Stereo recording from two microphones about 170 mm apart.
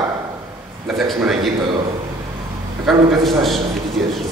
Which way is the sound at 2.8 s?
Centre (ahead or behind).